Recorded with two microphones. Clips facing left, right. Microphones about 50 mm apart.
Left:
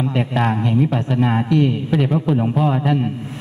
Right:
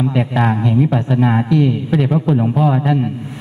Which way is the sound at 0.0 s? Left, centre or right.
Centre.